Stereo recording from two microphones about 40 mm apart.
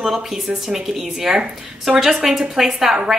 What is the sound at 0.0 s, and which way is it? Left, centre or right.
A woman's voice, centre.